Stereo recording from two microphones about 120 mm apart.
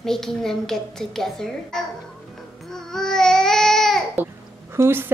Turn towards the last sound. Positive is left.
turn(degrees=-20)  # may be behind; listen again after turning